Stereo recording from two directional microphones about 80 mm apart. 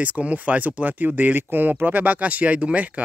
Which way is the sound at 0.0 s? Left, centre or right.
Centre.